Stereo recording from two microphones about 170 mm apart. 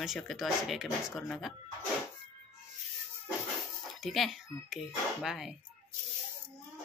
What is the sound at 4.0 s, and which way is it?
Speech, centre (ahead or behind).